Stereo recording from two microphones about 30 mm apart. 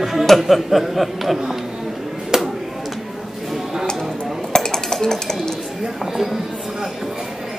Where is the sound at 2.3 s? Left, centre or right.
Centre.